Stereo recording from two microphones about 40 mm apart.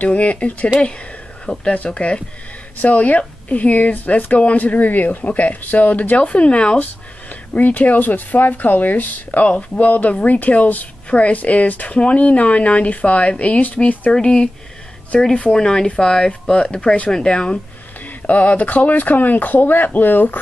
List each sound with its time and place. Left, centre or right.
0.0 s a woman's voice: left
1.4 s a woman's voice: left
6.2 s speech: left
6.8 s a woman's voice: left
14.1 s speech: left
15.5 s speech: centre
18.0 s speech: left